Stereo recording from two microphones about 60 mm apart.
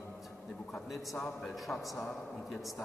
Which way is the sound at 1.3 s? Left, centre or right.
Centre.